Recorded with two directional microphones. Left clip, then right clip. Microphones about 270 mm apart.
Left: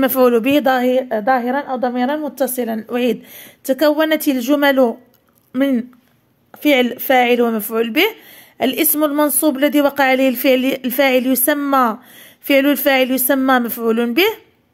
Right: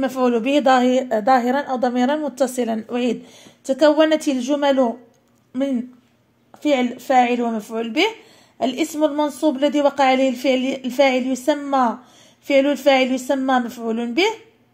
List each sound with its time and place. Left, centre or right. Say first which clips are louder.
0.0 s a woman's voice: left 6 dB; left